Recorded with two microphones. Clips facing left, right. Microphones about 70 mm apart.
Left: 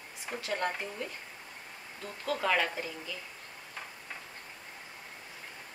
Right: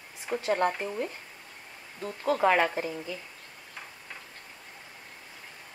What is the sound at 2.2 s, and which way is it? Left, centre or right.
Speech, right.